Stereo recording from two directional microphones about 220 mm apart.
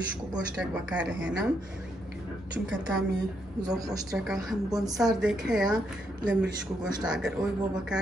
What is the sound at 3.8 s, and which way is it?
Speech, 15° right (ahead or behind).